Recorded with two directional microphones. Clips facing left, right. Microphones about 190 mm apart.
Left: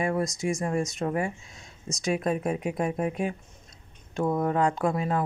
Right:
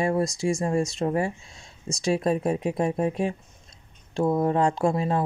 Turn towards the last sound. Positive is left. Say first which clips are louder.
# right 3 dB
turn(degrees=-30)  # may be behind; listen again after turning